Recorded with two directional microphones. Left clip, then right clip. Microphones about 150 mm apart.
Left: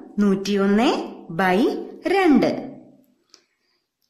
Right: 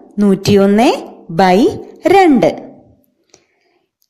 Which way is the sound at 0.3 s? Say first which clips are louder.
Right 11 dB; 55° right (ahead or behind).